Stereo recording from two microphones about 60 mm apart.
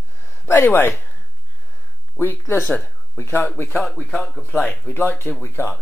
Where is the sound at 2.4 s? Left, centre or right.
Left.